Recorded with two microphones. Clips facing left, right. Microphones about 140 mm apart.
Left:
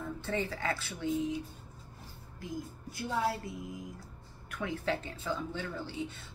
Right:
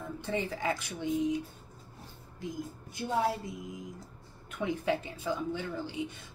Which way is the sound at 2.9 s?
20° right (ahead or behind).